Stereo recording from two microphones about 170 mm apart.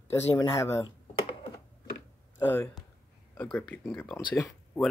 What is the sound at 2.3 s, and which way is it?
Speech, 15° left (ahead or behind).